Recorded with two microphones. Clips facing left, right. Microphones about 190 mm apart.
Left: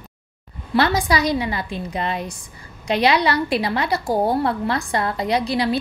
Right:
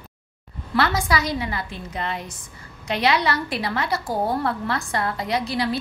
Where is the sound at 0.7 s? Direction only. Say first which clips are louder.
Left 3 dB; 15° left (ahead or behind).